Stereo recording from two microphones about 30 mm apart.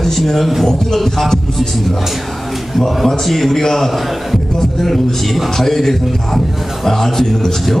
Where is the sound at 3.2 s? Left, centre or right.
Centre.